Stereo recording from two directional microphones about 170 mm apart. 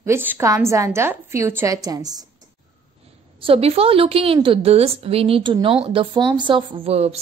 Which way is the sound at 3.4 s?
35° right (ahead or behind).